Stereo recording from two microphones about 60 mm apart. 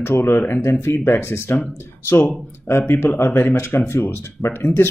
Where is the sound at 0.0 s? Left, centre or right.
Left.